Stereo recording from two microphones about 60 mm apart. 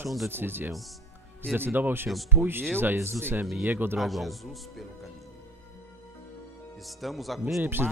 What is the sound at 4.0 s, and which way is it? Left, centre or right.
Speech, centre.